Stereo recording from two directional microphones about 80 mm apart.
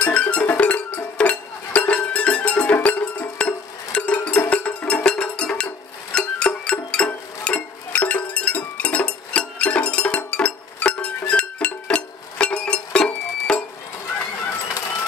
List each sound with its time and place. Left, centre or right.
0.0 s cowbell: centre
6.1 s music: centre